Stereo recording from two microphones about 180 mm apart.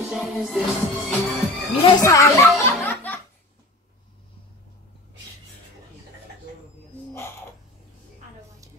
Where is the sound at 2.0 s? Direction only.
15° left (ahead or behind).